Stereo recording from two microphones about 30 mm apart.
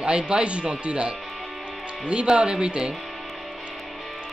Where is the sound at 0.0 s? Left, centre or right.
Right.